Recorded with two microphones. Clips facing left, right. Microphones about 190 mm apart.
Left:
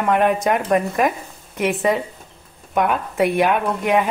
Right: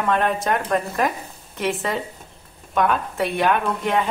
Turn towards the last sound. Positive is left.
turn(degrees=15)  # may be behind; listen again after turning